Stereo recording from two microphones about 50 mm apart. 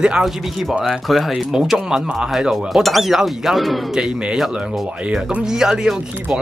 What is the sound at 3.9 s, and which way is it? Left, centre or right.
Speech, centre.